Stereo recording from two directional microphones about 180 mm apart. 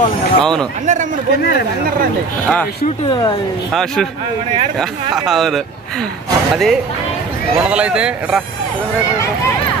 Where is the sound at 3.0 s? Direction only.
25° left (ahead or behind).